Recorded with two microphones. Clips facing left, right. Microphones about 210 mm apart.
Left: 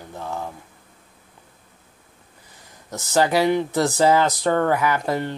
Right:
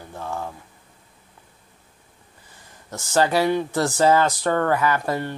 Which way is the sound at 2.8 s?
15° left (ahead or behind).